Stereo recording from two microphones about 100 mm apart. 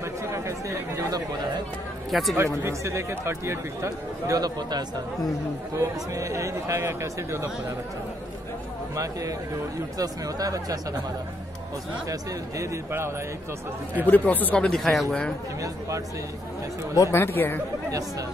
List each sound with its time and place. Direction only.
0.0 s speech: 30° right (ahead or behind)
2.0 s speech: centre (ahead or behind)
2.3 s speech: 25° right (ahead or behind)
4.4 s a man's voice: 45° right (ahead or behind)
5.8 s speech: 30° right (ahead or behind)
8.9 s speech: 35° right (ahead or behind)
12.1 s speech: 35° right (ahead or behind)
14.0 s speech: 15° left (ahead or behind)
16.9 s speech: 35° left (ahead or behind)
17.2 s speech: 20° left (ahead or behind)